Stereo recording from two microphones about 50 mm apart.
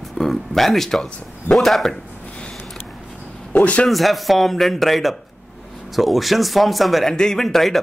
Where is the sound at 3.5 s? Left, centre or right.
Left.